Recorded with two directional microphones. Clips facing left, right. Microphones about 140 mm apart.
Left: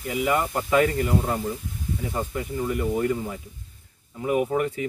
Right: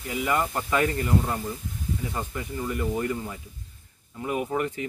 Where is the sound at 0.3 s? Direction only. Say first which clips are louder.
Left 1 dB; 5° left (ahead or behind).